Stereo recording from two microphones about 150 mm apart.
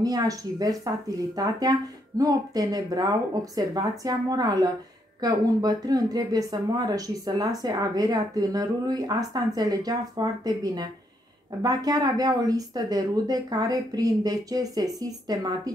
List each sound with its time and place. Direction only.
0.0 s speech: 25° right (ahead or behind)